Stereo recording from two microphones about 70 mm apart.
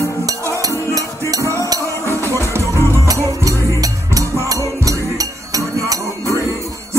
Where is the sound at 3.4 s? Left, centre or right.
Right.